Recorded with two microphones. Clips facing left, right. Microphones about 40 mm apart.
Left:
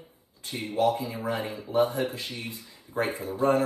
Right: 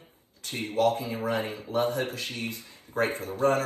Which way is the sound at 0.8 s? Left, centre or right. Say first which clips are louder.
Even; right.